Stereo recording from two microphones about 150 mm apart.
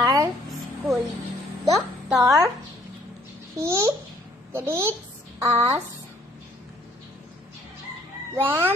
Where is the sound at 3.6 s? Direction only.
20° right (ahead or behind).